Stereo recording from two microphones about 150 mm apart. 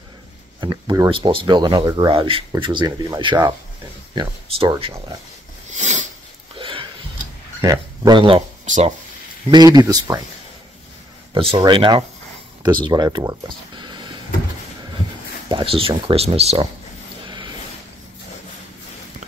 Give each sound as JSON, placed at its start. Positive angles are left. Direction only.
{"t": 0.6, "sound": "speech", "side_deg": -30}
{"t": 5.7, "sound": "a sound", "side_deg": -55}
{"t": 6.5, "sound": "a sound", "side_deg": -35}
{"t": 7.6, "sound": "speech", "side_deg": -25}
{"t": 8.6, "sound": "speech", "side_deg": -55}
{"t": 9.5, "sound": "speech", "side_deg": -25}
{"t": 11.5, "sound": "speech", "side_deg": -35}
{"t": 15.4, "sound": "speech", "side_deg": -35}
{"t": 17.2, "sound": "a sound", "side_deg": -30}